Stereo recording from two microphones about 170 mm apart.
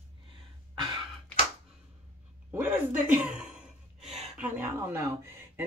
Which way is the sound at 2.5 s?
10° right (ahead or behind).